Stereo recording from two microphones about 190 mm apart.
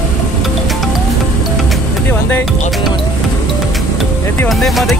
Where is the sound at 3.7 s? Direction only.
Centre (ahead or behind).